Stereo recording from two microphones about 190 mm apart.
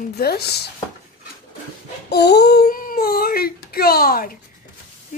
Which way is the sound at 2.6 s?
45° left (ahead or behind).